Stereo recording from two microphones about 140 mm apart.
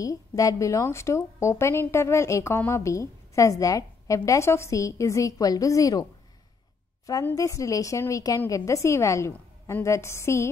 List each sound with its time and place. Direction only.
0.0 s a woman's voice: 25° left (ahead or behind)
7.2 s a woman's voice: 20° left (ahead or behind)